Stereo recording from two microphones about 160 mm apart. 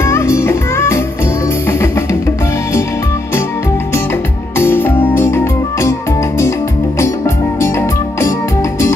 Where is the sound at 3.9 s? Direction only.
15° left (ahead or behind).